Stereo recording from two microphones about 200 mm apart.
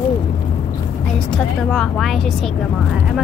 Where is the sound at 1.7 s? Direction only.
Centre (ahead or behind).